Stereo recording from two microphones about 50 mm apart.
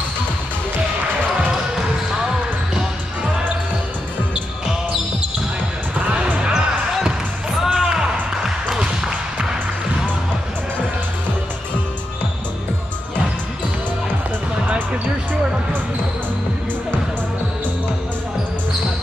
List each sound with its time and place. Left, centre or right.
6.0 s music: right
6.5 s music: centre